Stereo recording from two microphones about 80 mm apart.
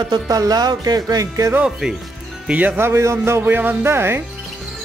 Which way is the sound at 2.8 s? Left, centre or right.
Right.